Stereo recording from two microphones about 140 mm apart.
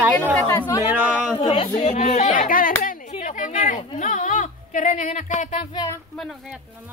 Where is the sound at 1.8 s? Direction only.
55° left (ahead or behind); by 2.7 s 75° left (ahead or behind).